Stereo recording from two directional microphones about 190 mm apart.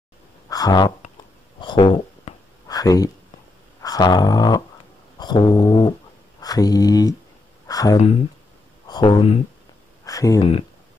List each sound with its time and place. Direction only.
0.5 s speech: 20° left (ahead or behind)
1.6 s a sound: 25° left (ahead or behind)
8.8 s speech: 25° left (ahead or behind)